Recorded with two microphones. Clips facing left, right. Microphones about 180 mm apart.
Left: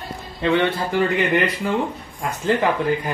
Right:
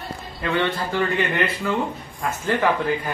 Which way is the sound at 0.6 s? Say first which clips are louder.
Left 3 dB; 15° left (ahead or behind).